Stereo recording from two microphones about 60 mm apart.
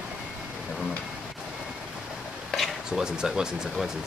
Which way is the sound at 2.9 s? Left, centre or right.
Centre.